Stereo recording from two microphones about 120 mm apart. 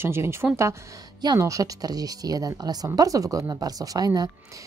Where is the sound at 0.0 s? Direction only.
20° right (ahead or behind).